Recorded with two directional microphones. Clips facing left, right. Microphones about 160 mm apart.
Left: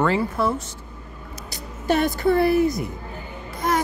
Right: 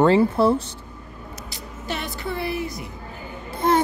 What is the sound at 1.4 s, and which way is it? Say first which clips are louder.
Speech: left 9 dB; 45° left (ahead or behind).